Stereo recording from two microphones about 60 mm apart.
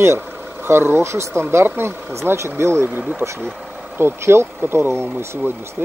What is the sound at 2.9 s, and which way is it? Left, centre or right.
Speech, right.